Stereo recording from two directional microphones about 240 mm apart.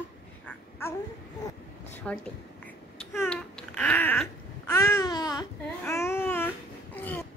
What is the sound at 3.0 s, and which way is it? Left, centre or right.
Babbling, centre.